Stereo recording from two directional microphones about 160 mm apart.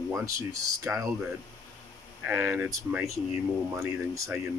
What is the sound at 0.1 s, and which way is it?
Speech, 20° right (ahead or behind).